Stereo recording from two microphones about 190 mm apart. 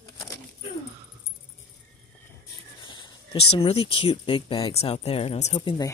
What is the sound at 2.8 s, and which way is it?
Speech, 25° left (ahead or behind).